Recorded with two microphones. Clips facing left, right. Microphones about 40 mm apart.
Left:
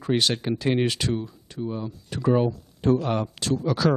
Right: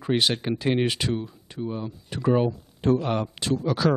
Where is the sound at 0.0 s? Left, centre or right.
Centre.